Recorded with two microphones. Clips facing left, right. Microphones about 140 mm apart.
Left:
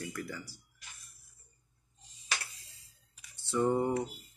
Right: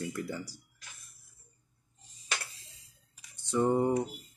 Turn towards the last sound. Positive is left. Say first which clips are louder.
# right 2 dB
turn(degrees=-15)  # may be behind; listen again after turning